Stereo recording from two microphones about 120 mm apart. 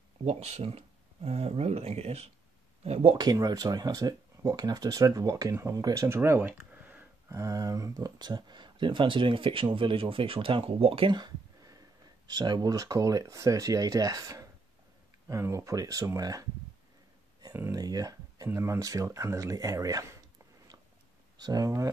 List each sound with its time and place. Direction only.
0.2 s speech: 65° right (ahead or behind)
3.2 s speech: 35° right (ahead or behind)
6.6 s a sound: 10° right (ahead or behind)
7.2 s speech: 25° right (ahead or behind)
17.6 s speech: 30° right (ahead or behind)
21.4 s speech: 30° right (ahead or behind)